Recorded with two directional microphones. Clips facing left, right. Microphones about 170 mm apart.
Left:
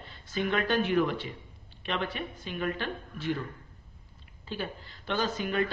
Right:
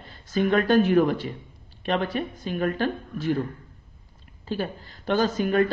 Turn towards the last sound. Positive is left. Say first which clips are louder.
# right 7 dB
turn(degrees=-45)  # may be behind; listen again after turning